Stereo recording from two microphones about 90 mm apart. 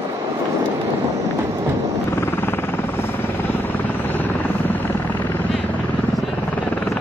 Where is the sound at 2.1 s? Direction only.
25° left (ahead or behind).